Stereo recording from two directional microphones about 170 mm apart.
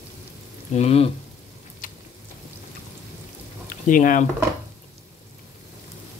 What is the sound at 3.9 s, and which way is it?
Speech, 50° left (ahead or behind).